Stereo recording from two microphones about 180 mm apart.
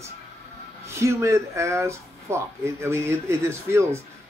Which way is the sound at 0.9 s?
15° right (ahead or behind).